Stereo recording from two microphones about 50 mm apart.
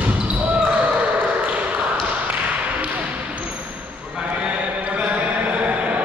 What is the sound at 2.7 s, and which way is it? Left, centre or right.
Basketball bounce, right.